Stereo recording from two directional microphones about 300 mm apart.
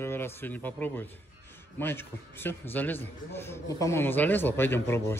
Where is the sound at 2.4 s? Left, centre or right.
Centre.